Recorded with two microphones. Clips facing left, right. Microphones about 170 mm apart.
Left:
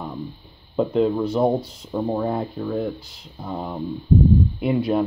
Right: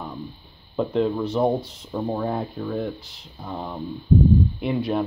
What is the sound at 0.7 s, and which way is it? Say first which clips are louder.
Speech: left 3 dB; centre (ahead or behind).